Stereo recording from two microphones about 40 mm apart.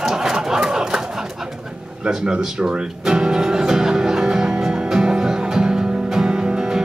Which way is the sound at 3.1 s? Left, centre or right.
Centre.